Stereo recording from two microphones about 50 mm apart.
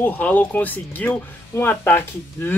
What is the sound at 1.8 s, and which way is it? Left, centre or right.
Speech, left.